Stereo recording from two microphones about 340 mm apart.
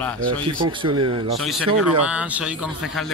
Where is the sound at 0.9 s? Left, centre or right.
Right.